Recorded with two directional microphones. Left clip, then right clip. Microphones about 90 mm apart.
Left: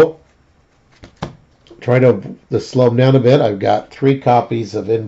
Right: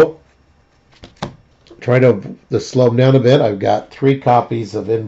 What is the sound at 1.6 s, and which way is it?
Speech, 15° right (ahead or behind).